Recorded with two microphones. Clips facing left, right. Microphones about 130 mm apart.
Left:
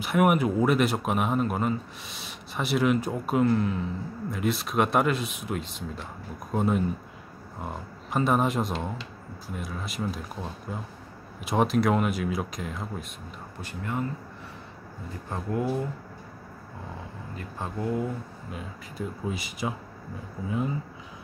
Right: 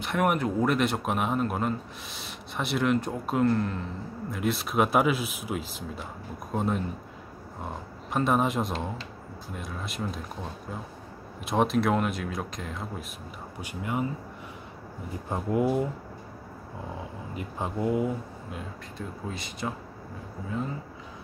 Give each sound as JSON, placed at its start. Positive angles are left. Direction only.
{"t": 0.0, "sound": "speech", "side_deg": 5}
{"t": 13.6, "sound": "speech", "side_deg": -15}
{"t": 15.2, "sound": "speech", "side_deg": -15}
{"t": 17.4, "sound": "speech", "side_deg": -15}
{"t": 18.5, "sound": "speech", "side_deg": 5}